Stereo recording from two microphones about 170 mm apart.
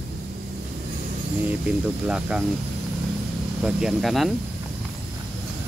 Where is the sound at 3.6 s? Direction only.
Centre (ahead or behind).